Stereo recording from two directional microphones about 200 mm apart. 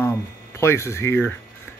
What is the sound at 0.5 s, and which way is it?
Speech, 15° left (ahead or behind).